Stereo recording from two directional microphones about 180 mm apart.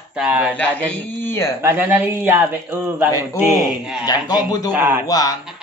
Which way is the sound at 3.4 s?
Centre (ahead or behind).